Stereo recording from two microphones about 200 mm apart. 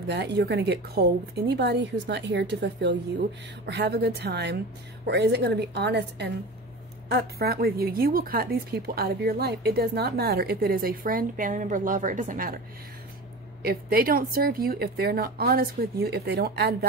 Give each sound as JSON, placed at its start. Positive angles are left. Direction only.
{"t": 0.1, "sound": "a woman's voice", "side_deg": -60}
{"t": 13.6, "sound": "a woman's voice", "side_deg": -50}